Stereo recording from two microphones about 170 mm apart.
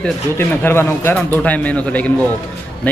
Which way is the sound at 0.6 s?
15° left (ahead or behind).